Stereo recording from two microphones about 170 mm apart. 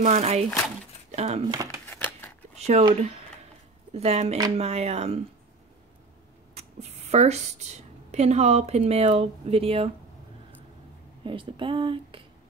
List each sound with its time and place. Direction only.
0.0 s speech: 35° right (ahead or behind)
1.5 s speech: 20° right (ahead or behind)
1.9 s scissors: 10° left (ahead or behind)
2.8 s speech: 35° right (ahead or behind)
6.5 s a woman's voice: 40° right (ahead or behind)
11.2 s speech: 30° right (ahead or behind)